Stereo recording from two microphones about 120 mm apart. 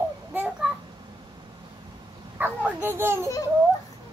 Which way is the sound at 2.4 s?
15° right (ahead or behind).